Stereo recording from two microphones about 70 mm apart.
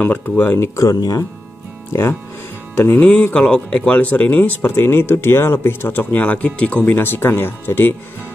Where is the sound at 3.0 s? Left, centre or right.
Centre.